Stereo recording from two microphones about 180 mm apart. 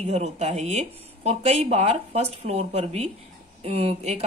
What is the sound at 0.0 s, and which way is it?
Speech, 40° right (ahead or behind).